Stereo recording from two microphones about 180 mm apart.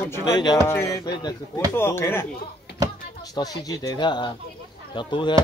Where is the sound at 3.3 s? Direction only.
20° left (ahead or behind).